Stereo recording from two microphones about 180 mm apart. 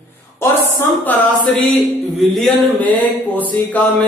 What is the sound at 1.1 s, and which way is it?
Speech, 10° left (ahead or behind).